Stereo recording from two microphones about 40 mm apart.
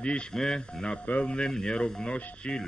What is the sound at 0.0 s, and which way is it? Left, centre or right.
Speech, left.